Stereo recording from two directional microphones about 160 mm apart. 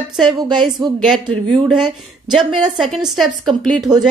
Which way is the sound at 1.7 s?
5° right (ahead or behind).